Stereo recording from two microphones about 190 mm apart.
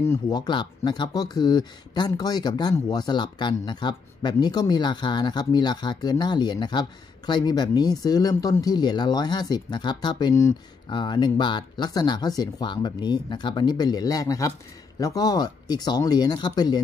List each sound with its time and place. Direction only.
0.0 s speech: 15° left (ahead or behind)